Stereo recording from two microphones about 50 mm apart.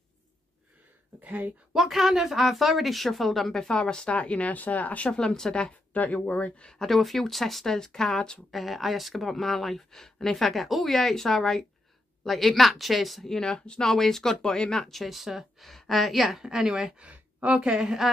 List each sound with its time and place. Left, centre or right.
1.2 s speech: right
1.7 s speech: centre
3.7 s speech: centre
5.1 s speech: centre
5.7 s speech: left
6.8 s speech: centre
8.5 s a woman's voice: centre
17.0 s a sound: right
17.6 s a woman's voice: centre